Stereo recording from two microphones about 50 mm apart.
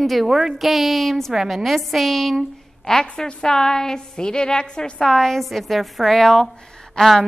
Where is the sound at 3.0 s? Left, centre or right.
Centre.